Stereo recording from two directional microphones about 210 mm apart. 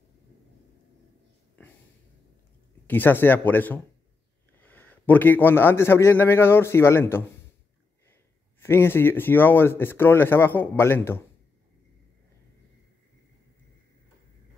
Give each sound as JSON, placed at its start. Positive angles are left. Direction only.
{"t": 2.9, "sound": "a man's voice", "side_deg": 10}
{"t": 8.5, "sound": "a man's voice", "side_deg": 10}